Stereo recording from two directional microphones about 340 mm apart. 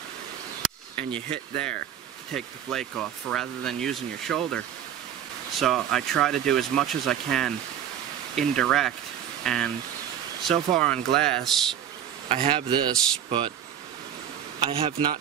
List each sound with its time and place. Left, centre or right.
0.6 s speech: centre
5.6 s speech: centre
12.3 s speech: centre
14.7 s speech: centre